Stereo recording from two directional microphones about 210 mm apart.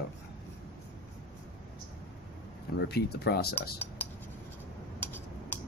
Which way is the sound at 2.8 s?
50° left (ahead or behind).